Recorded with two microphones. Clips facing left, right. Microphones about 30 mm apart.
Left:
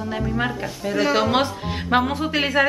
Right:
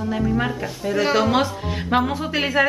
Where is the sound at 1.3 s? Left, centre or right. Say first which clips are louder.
Right 1 dB; centre.